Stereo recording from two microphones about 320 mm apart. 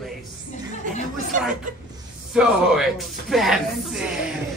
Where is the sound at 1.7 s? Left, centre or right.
Right.